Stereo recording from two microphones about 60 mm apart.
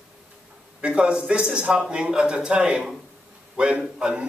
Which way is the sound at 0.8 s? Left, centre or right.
Centre.